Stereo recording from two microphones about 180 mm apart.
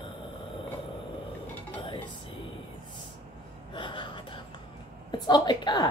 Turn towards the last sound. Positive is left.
turn(degrees=25)  # may be behind; listen again after turning